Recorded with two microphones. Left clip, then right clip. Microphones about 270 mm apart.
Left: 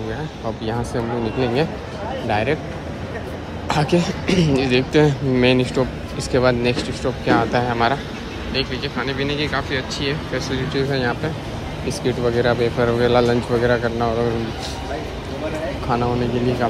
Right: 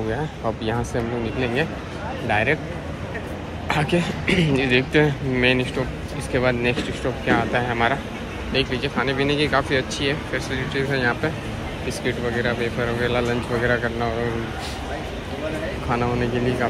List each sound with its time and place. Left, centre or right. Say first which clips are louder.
1.4 s speech: left 3 dB; centre
3.6 s speech: left 3 dB; centre